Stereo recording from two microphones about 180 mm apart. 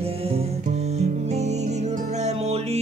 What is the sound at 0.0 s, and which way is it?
Music, 35° right (ahead or behind).